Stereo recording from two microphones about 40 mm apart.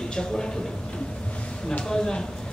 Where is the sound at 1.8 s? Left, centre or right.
Centre.